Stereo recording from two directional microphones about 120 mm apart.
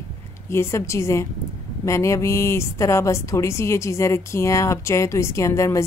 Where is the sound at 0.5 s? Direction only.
20° left (ahead or behind).